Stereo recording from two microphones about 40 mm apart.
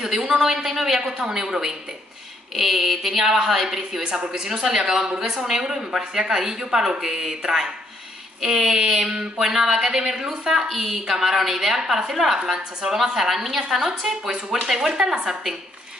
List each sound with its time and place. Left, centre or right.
0.0 s a woman's voice: centre
2.5 s a woman's voice: centre
5.0 s a woman's voice: centre
8.4 s a woman's voice: centre